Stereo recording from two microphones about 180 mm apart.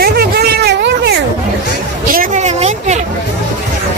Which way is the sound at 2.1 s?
45° right (ahead or behind).